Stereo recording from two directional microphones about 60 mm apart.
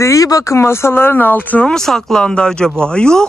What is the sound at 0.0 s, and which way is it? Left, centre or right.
Speech, left.